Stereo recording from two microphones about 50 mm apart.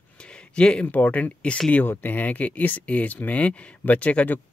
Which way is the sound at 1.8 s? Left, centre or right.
Left.